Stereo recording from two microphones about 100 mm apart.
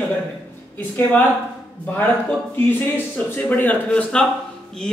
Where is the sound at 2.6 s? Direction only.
20° left (ahead or behind).